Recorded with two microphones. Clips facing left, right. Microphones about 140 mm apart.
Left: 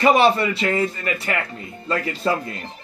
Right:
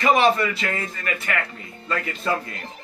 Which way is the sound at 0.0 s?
30° left (ahead or behind).